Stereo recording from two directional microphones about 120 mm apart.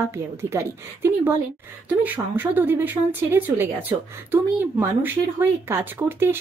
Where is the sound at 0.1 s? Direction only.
20° right (ahead or behind).